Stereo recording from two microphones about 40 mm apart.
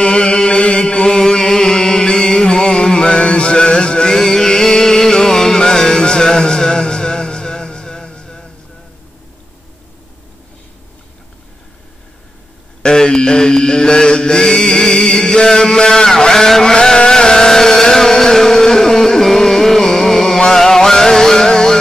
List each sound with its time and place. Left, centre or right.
0.0 s chant: left
12.8 s mantra: centre
16.7 s a sound: left